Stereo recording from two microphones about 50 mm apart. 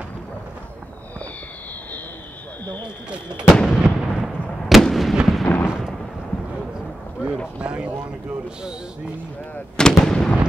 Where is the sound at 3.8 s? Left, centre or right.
Centre.